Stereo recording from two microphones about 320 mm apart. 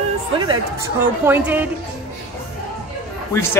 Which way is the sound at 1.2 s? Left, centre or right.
Centre.